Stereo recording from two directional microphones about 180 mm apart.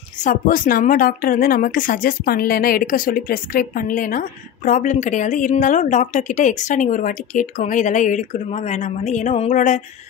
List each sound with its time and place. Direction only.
0.2 s a woman's voice: 50° left (ahead or behind)